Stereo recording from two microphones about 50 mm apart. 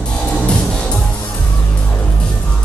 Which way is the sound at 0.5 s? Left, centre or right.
Centre.